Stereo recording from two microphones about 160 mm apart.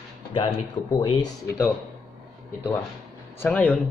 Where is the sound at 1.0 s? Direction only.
25° left (ahead or behind).